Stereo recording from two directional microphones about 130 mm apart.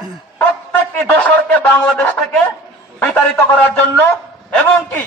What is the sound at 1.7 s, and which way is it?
A man's voice, 10° left (ahead or behind).